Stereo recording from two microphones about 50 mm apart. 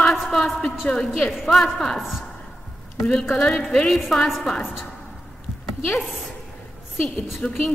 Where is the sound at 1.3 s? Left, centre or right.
Centre.